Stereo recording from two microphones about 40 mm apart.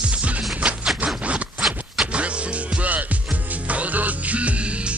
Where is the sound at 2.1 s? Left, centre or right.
Right.